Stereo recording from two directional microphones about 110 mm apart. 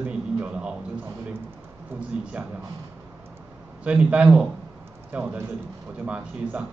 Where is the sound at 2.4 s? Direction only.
15° right (ahead or behind).